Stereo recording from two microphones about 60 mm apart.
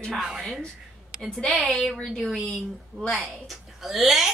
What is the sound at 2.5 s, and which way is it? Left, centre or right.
A woman's voice, centre.